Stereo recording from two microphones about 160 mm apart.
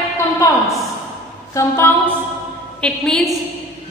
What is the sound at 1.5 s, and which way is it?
Speech, 15° left (ahead or behind).